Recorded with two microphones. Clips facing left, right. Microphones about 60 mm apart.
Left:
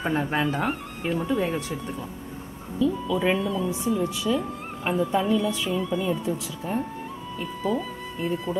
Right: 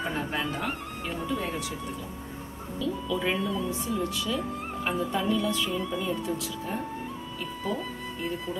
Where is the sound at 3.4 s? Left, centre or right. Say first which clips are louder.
Left 3 dB; centre.